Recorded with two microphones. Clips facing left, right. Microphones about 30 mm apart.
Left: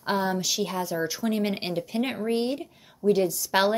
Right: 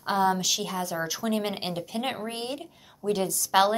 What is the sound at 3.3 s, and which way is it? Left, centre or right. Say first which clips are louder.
Speech: right 1 dB; centre.